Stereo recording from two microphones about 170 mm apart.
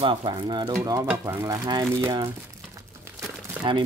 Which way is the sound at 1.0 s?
15° right (ahead or behind).